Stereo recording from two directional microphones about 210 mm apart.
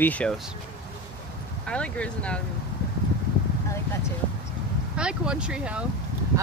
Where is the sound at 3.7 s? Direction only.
15° left (ahead or behind).